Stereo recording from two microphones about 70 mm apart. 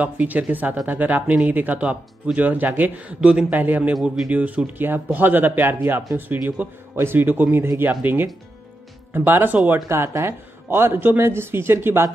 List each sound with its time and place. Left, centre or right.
0.0 s speech: right
3.9 s speech: centre
4.3 s speech: right